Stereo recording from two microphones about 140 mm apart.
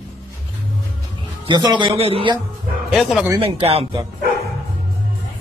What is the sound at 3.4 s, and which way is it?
Speech, 45° right (ahead or behind).